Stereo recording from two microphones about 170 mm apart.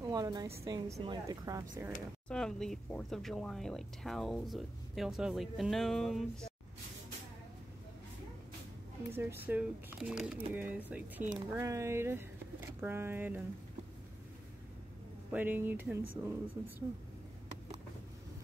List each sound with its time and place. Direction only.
0.0 s a woman's voice: 20° right (ahead or behind)
2.2 s speech: 5° left (ahead or behind)
9.1 s speech: 10° right (ahead or behind)
15.3 s speech: 10° right (ahead or behind)